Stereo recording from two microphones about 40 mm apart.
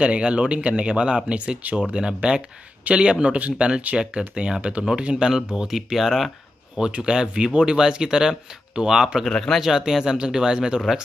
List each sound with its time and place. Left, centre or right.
0.0 s speech: right
3.3 s speech: right
5.7 s speech: centre
6.8 s speech: centre
9.3 s speech: centre
9.6 s speech: centre